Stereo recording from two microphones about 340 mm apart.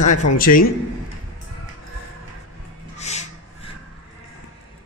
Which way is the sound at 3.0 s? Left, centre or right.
Centre.